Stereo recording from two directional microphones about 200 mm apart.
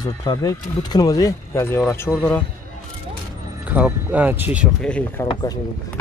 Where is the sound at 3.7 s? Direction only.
5° right (ahead or behind).